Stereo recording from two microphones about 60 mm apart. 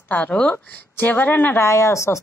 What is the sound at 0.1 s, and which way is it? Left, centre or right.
Speech, left.